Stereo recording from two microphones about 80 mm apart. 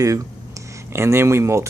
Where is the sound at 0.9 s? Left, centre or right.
Right.